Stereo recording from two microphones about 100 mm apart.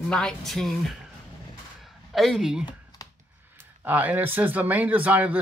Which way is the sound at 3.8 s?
15° right (ahead or behind).